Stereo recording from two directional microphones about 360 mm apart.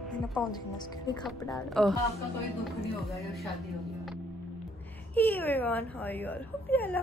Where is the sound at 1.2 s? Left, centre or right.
Centre.